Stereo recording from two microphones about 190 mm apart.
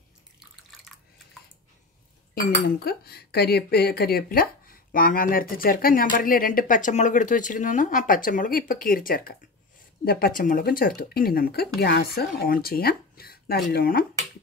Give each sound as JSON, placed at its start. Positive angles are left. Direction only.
{"t": 0.4, "sound": "bathtub", "side_deg": 0}
{"t": 2.3, "sound": "speech", "side_deg": 55}